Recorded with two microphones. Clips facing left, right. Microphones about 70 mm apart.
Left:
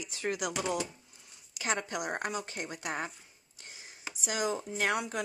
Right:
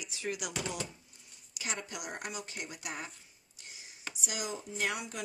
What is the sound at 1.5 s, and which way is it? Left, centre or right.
Speech, left.